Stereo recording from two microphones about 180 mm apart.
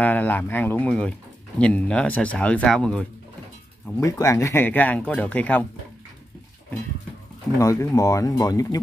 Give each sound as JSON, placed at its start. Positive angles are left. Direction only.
{"t": 0.0, "sound": "speech", "side_deg": 10}
{"t": 3.8, "sound": "speech", "side_deg": 15}
{"t": 7.5, "sound": "speech", "side_deg": 20}